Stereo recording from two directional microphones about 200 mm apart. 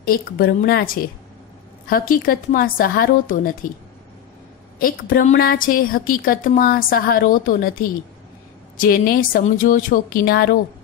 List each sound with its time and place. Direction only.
0.0 s a woman's voice: 50° left (ahead or behind)
4.7 s a woman's voice: 45° left (ahead or behind)
8.7 s a woman's voice: 45° left (ahead or behind)